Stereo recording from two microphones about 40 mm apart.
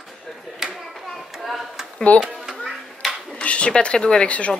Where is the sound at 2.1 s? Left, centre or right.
Left.